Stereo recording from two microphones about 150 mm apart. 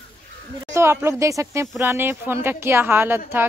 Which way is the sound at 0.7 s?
15° right (ahead or behind).